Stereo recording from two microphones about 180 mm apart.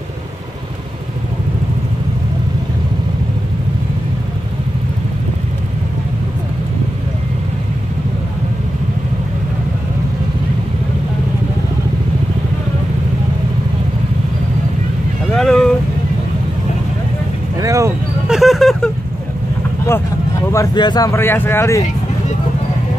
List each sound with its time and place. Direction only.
15.3 s vehicle: centre (ahead or behind)
17.6 s vehicle: 15° right (ahead or behind)
18.3 s a sound: centre (ahead or behind)
20.5 s speech: 25° left (ahead or behind)